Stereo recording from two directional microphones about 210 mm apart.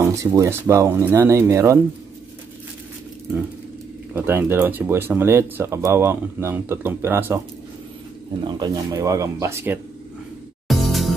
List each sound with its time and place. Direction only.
0.0 s speech: 15° right (ahead or behind)
4.1 s speech: 10° right (ahead or behind)
8.5 s speech: 20° right (ahead or behind)
10.7 s music: centre (ahead or behind)